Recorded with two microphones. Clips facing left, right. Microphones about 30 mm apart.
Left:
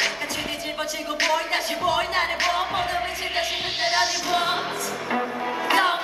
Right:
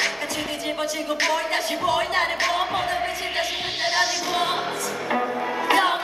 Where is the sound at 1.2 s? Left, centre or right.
Centre.